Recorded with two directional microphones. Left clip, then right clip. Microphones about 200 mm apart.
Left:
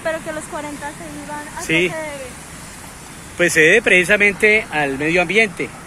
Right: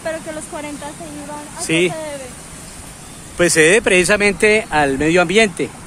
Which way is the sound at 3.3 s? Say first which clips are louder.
Even; 25° right (ahead or behind).